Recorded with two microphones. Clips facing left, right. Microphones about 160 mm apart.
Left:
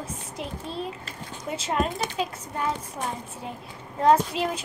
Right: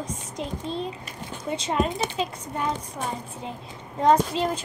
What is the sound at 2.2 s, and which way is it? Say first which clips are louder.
Speech: even; 5° left (ahead or behind).